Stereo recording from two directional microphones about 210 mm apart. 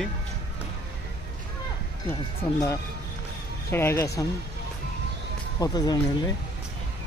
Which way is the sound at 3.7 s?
10° left (ahead or behind).